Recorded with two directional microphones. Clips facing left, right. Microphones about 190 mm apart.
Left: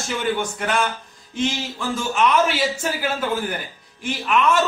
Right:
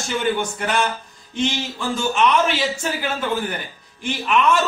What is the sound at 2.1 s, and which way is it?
Speech, 5° left (ahead or behind).